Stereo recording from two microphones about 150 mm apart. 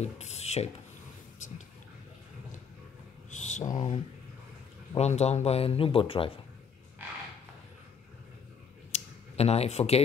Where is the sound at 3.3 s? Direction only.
55° left (ahead or behind).